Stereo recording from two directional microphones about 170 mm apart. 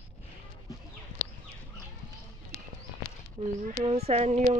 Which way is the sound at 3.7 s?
35° right (ahead or behind).